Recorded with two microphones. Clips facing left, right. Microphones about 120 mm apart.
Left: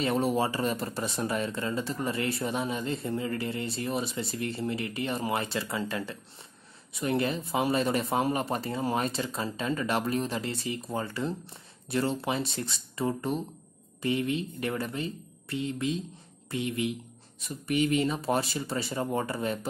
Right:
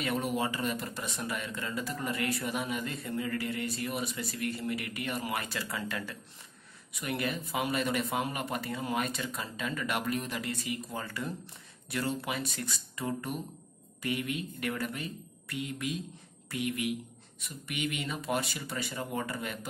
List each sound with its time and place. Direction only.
0.0 s speech: 30° left (ahead or behind)